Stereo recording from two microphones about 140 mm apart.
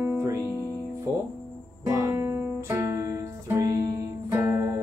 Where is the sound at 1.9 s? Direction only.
20° right (ahead or behind).